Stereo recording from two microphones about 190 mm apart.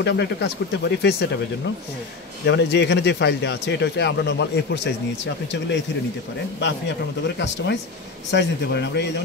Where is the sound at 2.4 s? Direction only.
65° left (ahead or behind).